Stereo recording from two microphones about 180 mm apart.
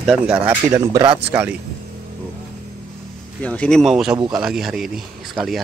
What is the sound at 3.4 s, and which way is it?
Speech, 5° left (ahead or behind).